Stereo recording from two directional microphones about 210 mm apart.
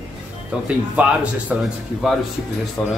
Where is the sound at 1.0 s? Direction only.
5° right (ahead or behind).